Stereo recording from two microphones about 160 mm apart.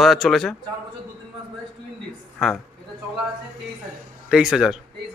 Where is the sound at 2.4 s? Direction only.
Centre (ahead or behind).